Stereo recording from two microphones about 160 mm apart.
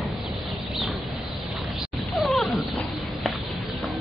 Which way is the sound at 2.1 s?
Centre (ahead or behind).